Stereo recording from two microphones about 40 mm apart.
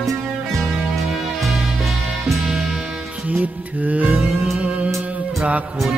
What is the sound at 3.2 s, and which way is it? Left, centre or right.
Music, right.